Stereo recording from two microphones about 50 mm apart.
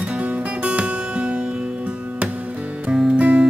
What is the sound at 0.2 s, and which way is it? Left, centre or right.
Music, right.